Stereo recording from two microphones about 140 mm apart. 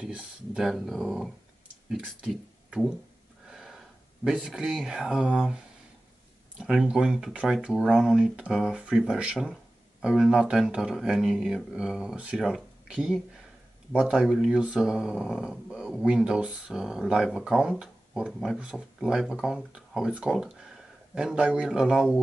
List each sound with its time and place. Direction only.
0.0 s speech: 5° right (ahead or behind)
6.6 s speech: 5° right (ahead or behind)